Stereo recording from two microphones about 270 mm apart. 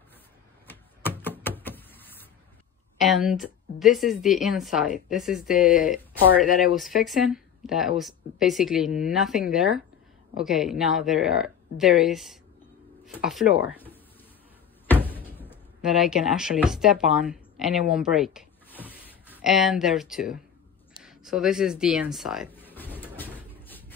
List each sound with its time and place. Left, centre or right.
0.7 s door: centre
3.0 s speech: centre
5.6 s speech: left
6.7 s speech: centre
15.0 s speech: centre
18.9 s a sound: centre
21.0 s speech: centre
23.1 s vehicle: centre